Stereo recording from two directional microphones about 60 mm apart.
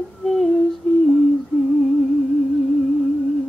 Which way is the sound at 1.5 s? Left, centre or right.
Centre.